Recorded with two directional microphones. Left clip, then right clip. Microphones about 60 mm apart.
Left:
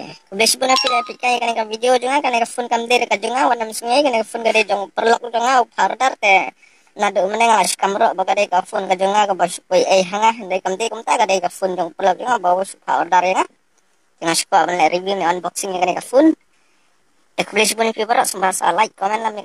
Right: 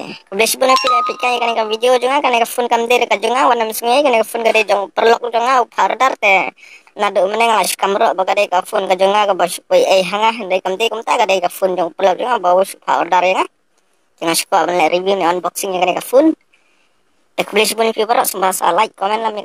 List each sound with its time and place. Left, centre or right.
0.0 s speech: right
17.4 s speech: right